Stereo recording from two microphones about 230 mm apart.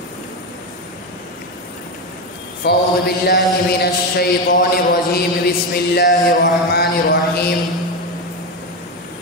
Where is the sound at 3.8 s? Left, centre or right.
Left.